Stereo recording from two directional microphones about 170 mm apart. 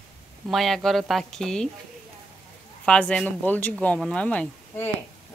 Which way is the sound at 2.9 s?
5° left (ahead or behind).